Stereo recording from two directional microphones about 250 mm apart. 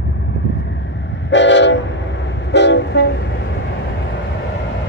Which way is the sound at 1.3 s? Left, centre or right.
Left.